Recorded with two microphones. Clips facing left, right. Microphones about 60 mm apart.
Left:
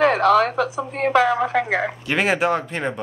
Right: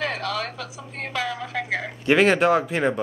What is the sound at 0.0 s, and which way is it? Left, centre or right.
Speech, left.